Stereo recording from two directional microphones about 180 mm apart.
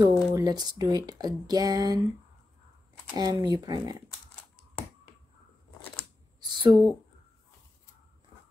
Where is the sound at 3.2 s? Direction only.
20° right (ahead or behind).